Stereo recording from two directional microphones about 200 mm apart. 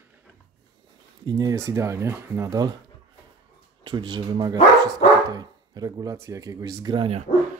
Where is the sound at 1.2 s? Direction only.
15° right (ahead or behind).